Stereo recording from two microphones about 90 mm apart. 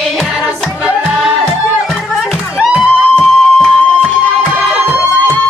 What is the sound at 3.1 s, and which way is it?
Music, 5° left (ahead or behind).